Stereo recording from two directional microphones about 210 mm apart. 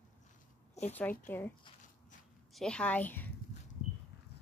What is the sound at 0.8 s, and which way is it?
Speech, 30° left (ahead or behind).